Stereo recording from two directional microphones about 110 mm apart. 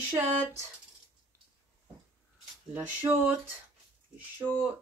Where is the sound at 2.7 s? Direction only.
15° right (ahead or behind).